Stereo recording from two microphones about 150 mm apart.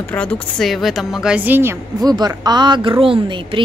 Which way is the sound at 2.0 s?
25° right (ahead or behind).